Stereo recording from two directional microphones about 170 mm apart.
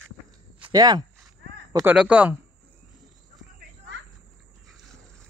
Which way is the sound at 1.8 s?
10° right (ahead or behind).